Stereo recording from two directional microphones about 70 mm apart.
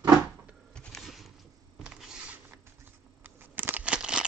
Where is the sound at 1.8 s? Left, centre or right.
Centre.